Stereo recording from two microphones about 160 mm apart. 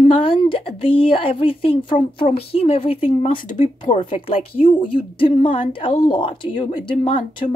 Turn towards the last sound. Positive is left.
turn(degrees=35)  # may be behind; listen again after turning